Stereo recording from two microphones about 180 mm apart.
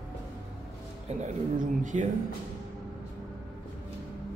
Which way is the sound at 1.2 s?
45° right (ahead or behind).